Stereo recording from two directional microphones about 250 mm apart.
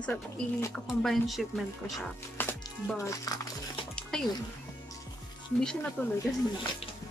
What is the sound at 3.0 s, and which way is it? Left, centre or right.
Speech, centre.